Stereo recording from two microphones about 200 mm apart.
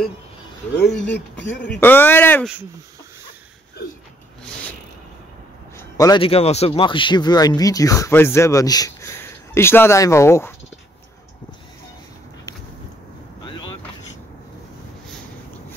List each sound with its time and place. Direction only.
1.0 s speech: 60° left (ahead or behind)
1.6 s a man's voice: 10° left (ahead or behind)
5.8 s a man's voice: 15° left (ahead or behind)